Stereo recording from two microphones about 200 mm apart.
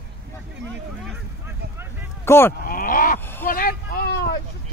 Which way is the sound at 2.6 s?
45° left (ahead or behind).